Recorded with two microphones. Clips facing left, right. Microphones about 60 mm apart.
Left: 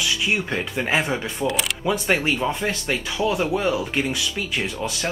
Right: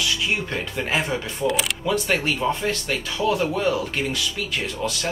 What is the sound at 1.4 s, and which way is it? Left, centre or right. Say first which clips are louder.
Speech: right 2 dB; centre.